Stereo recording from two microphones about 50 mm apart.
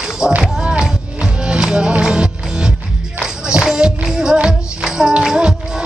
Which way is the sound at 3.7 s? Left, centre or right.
Centre.